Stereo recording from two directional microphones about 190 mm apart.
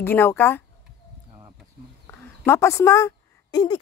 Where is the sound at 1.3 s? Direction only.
20° right (ahead or behind).